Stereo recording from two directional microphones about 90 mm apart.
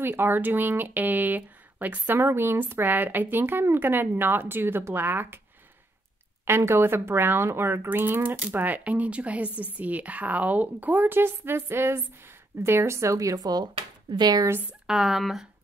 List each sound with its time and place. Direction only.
0.0 s speech: 25° right (ahead or behind)
6.4 s speech: 30° right (ahead or behind); by 14.5 s 50° right (ahead or behind)
14.7 s speech: 5° right (ahead or behind)